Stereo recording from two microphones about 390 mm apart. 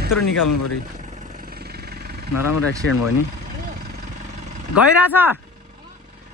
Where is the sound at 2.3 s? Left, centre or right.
Left.